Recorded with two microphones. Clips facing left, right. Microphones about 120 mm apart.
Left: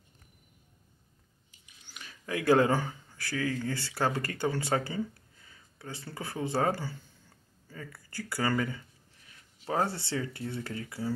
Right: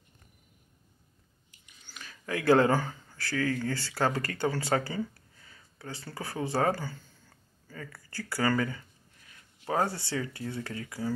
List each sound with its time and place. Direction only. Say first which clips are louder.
1.9 s speech: right 1 dB; 20° left (ahead or behind)
5.5 s a sound: right 1 dB; 20° left (ahead or behind)
6.1 s speech: right 1 dB; 20° left (ahead or behind)